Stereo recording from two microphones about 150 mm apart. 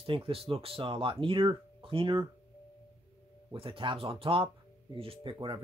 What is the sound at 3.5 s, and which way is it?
Speech, 35° right (ahead or behind).